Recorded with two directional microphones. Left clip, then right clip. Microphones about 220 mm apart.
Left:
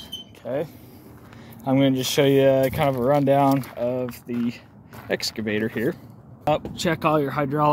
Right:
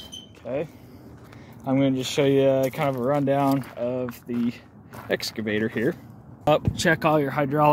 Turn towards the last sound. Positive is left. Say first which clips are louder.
# right 1 dB
turn(degrees=-5)  # may be behind; listen again after turning